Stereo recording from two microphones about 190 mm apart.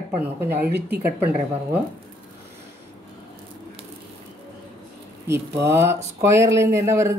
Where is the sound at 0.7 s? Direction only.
60° right (ahead or behind).